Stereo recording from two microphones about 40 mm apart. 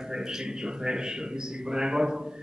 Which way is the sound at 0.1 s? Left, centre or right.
Centre.